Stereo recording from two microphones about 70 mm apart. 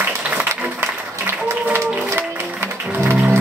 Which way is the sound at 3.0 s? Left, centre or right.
Right.